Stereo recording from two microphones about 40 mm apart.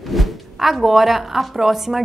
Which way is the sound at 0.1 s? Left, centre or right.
Centre.